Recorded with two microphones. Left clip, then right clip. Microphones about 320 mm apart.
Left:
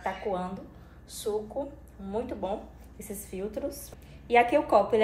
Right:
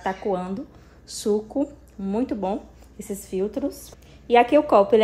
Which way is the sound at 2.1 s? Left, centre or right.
Right.